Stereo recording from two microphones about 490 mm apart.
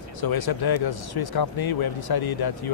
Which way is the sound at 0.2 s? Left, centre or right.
Left.